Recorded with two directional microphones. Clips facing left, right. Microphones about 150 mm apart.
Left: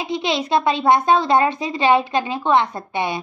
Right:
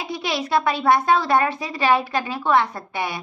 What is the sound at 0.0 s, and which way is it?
A woman's voice, 20° left (ahead or behind).